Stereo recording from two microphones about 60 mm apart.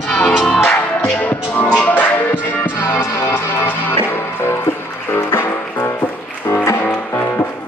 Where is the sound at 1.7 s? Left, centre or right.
Left.